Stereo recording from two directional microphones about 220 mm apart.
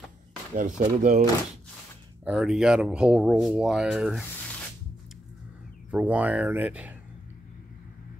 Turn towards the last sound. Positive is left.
turn(degrees=-5)  # may be behind; listen again after turning